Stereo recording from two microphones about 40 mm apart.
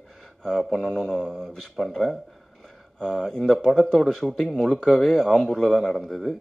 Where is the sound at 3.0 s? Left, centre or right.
Centre.